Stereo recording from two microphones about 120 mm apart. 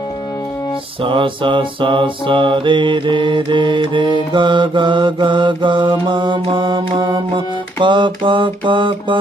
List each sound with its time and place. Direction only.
1.0 s mantra: 45° right (ahead or behind)